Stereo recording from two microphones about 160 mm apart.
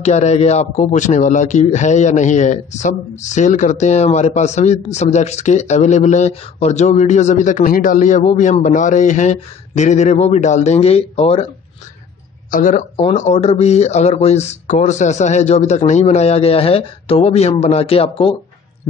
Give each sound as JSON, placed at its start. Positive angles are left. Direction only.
{"t": 0.0, "sound": "a man's voice", "side_deg": 45}
{"t": 12.4, "sound": "a man's voice", "side_deg": 55}